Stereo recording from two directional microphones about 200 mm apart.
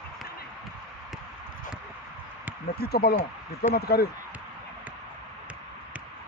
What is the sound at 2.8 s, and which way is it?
Speech, 50° left (ahead or behind).